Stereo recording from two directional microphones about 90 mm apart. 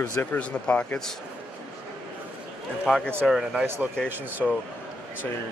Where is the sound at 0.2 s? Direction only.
15° left (ahead or behind).